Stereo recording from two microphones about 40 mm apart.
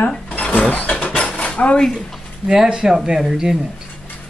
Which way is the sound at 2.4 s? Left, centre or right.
Centre.